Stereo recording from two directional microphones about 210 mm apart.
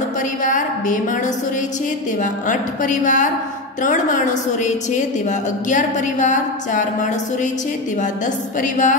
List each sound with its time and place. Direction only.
0.4 s a sound: 40° left (ahead or behind)
2.4 s a woman's voice: 35° left (ahead or behind)
8.5 s a woman's voice: 35° left (ahead or behind)